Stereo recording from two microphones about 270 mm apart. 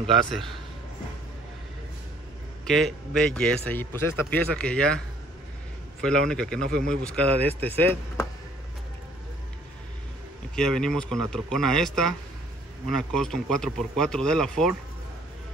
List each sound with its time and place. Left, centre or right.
2.6 s a man's voice: centre
10.5 s a man's voice: centre